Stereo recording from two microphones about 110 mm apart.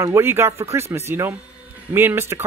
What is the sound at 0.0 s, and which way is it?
Speech, 25° right (ahead or behind).